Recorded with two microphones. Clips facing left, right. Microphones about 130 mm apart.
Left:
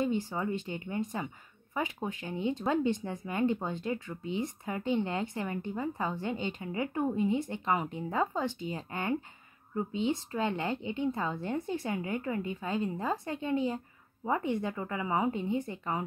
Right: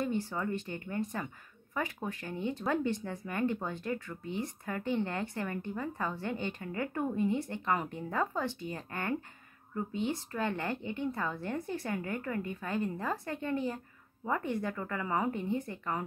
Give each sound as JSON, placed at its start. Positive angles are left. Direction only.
{"t": 0.0, "sound": "a woman's voice", "side_deg": 15}